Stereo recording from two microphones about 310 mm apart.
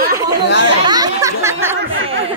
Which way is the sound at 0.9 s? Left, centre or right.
Centre.